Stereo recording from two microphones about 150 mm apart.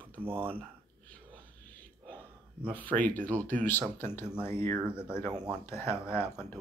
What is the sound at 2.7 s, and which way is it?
Speech, 10° left (ahead or behind).